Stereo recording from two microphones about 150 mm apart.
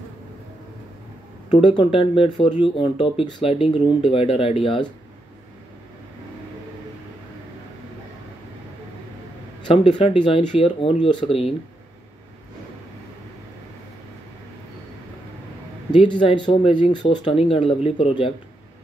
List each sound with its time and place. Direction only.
1.6 s speech: 30° left (ahead or behind)
9.8 s speech: 40° left (ahead or behind)
15.9 s speech: 35° left (ahead or behind)